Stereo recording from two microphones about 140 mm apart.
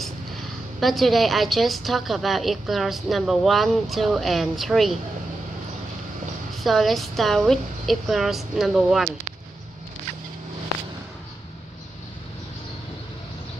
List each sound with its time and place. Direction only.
0.7 s a woman's voice: centre (ahead or behind)
6.5 s a woman's voice: centre (ahead or behind)